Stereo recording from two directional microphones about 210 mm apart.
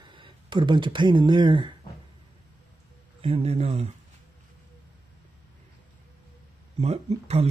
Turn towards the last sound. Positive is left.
turn(degrees=-30)  # may be behind; listen again after turning